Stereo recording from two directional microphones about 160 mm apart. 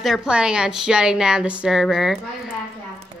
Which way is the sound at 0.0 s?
5° right (ahead or behind).